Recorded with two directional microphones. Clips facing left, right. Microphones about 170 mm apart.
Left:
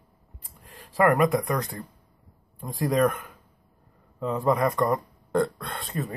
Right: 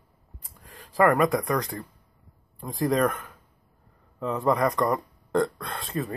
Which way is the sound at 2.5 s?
Centre (ahead or behind).